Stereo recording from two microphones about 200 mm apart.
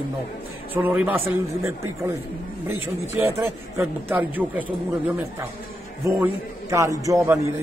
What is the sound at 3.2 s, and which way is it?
Speech, 10° right (ahead or behind).